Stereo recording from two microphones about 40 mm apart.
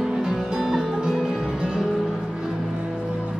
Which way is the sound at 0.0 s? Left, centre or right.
Centre.